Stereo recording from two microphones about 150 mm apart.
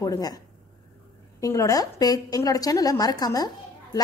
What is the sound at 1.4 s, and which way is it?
A woman's voice, 20° left (ahead or behind).